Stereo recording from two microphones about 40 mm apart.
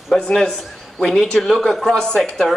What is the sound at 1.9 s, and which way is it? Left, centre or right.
Speech, centre.